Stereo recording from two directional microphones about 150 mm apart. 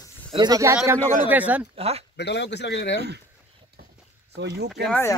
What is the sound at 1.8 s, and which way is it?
Speech, 40° right (ahead or behind).